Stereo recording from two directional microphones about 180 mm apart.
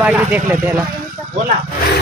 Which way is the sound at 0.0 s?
10° right (ahead or behind).